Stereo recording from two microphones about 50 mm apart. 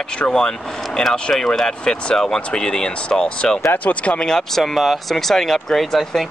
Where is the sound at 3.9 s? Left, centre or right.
Left.